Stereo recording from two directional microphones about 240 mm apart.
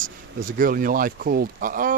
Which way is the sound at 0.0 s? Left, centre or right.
Right.